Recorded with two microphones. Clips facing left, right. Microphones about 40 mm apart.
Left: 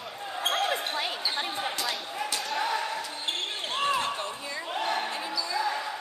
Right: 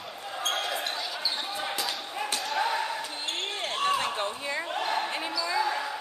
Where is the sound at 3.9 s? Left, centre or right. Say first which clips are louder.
Right 1 dB; right.